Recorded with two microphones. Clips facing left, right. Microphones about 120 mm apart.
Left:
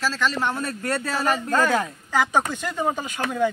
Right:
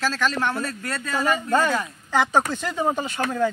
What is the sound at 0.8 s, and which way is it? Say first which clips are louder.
Speech: left 5 dB; 30° left (ahead or behind).